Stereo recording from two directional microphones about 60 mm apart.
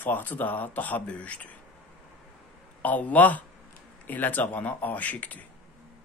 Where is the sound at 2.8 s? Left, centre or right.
Left.